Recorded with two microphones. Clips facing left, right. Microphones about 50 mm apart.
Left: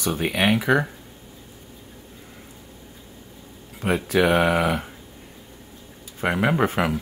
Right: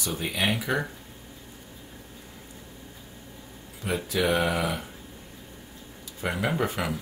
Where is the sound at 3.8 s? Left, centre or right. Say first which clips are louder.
Left 7 dB; left.